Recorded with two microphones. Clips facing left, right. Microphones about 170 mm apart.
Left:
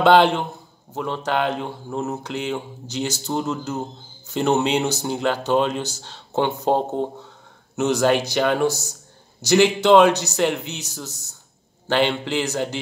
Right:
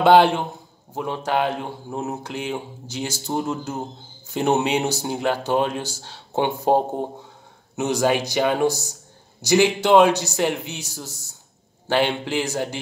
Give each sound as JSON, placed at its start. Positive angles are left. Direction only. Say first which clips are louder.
{"t": 0.0, "sound": "speech", "louder": "even", "side_deg": -10}